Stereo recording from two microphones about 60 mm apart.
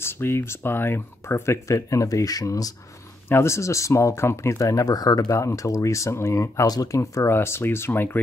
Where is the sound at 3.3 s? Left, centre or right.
Left.